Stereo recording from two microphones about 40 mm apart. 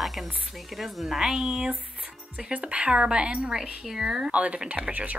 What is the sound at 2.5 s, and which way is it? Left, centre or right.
Speech, right.